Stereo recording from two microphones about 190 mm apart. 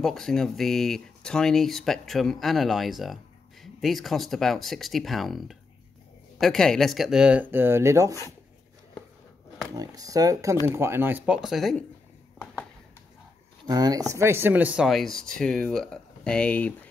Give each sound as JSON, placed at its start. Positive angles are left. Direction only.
{"t": 0.0, "sound": "speech", "side_deg": 0}
{"t": 9.8, "sound": "speech", "side_deg": -20}
{"t": 13.7, "sound": "speech", "side_deg": -20}